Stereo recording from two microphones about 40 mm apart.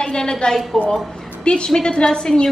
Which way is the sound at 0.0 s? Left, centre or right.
Centre.